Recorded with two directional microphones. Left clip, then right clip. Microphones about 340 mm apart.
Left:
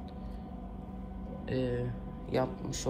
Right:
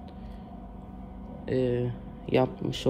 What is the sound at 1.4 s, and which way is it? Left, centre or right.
Speech, centre.